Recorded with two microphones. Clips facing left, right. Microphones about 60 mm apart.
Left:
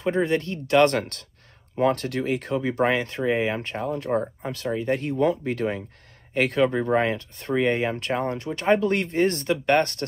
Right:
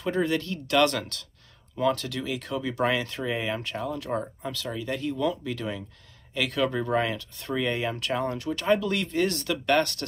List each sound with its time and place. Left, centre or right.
0.0 s speech: left